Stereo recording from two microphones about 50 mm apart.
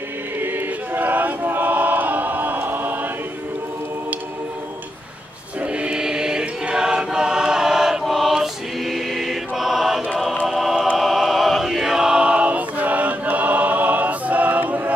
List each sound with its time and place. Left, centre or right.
0.4 s choir: right
5.6 s choir: right; by 10.0 s centre
10.4 s music: centre
11.0 s choir: centre; by 14.9 s right